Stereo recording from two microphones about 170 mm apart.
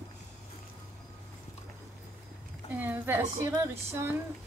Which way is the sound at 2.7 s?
10° right (ahead or behind).